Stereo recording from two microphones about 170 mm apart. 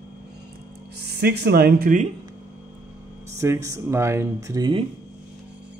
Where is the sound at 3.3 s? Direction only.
20° right (ahead or behind).